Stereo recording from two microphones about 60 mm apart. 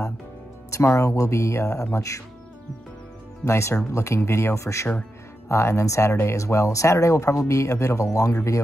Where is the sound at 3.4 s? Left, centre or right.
Left.